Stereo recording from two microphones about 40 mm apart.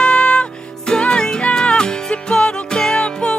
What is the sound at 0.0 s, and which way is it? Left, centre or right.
Music, left.